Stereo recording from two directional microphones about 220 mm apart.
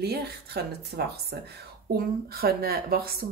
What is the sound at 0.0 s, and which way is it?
A woman's voice, 45° right (ahead or behind).